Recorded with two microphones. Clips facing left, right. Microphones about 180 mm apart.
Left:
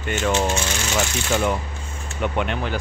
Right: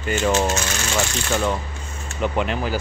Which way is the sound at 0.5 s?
5° left (ahead or behind).